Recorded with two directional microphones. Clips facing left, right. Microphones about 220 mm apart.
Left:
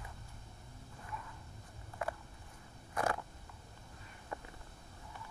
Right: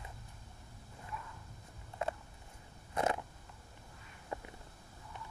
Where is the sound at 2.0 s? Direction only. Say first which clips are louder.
Right 2 dB; 25° right (ahead or behind).